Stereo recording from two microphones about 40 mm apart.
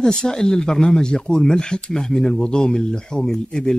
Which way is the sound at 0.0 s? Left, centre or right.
Centre.